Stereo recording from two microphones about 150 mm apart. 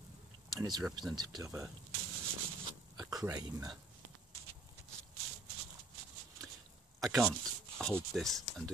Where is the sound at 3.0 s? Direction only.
25° right (ahead or behind).